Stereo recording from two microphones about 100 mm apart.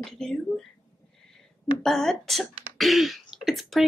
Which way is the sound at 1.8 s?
5° left (ahead or behind).